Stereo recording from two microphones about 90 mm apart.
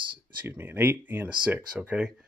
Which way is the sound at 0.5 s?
25° right (ahead or behind).